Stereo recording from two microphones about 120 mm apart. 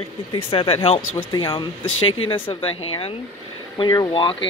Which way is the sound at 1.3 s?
40° left (ahead or behind).